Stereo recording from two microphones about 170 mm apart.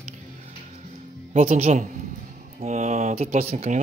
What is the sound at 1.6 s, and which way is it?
Speech, 45° right (ahead or behind).